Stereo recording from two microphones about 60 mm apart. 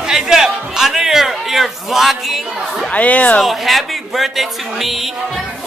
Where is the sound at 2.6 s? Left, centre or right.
Centre.